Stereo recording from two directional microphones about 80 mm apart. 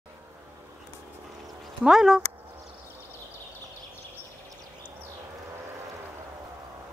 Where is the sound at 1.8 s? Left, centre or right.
Centre.